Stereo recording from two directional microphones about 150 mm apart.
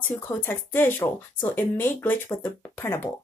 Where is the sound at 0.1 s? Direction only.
15° left (ahead or behind).